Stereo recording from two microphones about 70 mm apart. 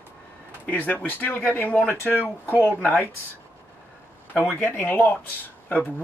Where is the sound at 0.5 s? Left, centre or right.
Left.